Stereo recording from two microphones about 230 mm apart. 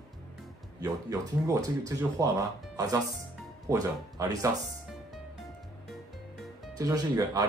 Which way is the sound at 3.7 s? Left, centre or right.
Centre.